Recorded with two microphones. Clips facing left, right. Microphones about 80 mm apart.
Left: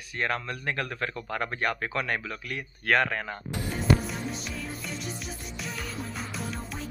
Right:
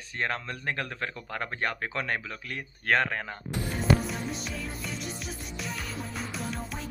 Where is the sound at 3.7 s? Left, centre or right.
Centre.